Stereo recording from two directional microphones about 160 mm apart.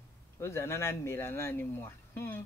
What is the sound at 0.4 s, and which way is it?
Speech, 15° left (ahead or behind).